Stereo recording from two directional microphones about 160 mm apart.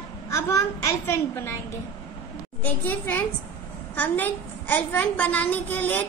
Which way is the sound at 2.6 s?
10° left (ahead or behind).